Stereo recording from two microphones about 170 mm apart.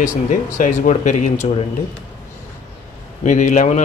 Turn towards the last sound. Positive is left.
turn(degrees=45)  # may be behind; listen again after turning